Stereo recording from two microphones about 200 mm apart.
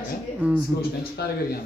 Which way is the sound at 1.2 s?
55° left (ahead or behind).